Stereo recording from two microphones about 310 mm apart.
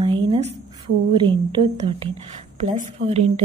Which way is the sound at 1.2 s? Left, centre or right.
Centre.